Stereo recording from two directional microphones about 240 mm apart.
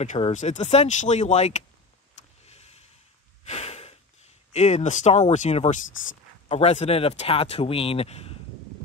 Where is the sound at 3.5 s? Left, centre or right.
Left.